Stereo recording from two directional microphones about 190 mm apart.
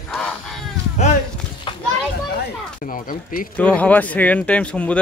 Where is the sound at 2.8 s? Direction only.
45° left (ahead or behind).